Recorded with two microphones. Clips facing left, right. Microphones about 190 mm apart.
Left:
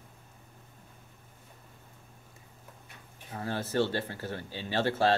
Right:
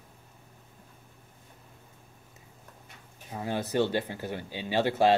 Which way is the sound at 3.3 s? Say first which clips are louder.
Right 2 dB; 15° right (ahead or behind).